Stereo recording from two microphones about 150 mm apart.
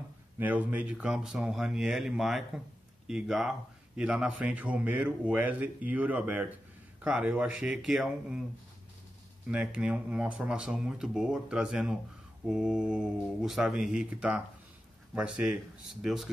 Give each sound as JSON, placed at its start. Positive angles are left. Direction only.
{"t": 0.4, "sound": "speech", "side_deg": -10}
{"t": 9.5, "sound": "speech", "side_deg": -5}